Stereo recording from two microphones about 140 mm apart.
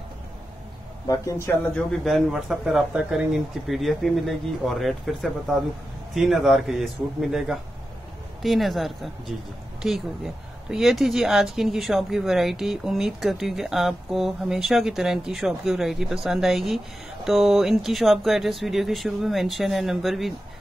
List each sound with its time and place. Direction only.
1.0 s speech: 25° left (ahead or behind)
1.9 s speech: centre (ahead or behind)